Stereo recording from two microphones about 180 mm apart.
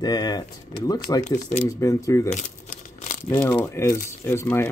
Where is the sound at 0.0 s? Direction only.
25° left (ahead or behind).